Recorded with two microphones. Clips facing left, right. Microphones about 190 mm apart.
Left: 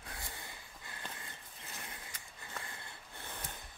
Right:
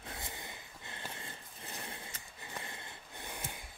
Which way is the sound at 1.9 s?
25° right (ahead or behind).